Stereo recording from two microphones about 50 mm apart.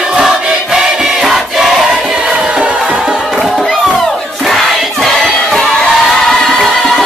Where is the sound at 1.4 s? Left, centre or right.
Centre.